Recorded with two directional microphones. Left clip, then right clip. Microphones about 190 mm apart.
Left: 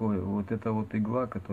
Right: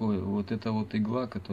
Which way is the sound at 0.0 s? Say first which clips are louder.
Even; 10° right (ahead or behind).